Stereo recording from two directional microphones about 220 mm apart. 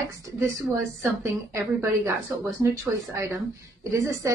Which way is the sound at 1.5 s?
10° right (ahead or behind).